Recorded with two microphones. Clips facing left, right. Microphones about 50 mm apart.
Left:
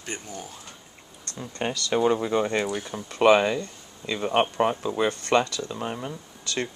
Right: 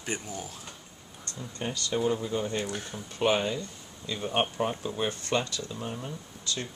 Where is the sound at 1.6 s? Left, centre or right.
Left.